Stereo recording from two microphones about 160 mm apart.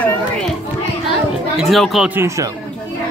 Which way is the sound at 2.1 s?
15° right (ahead or behind).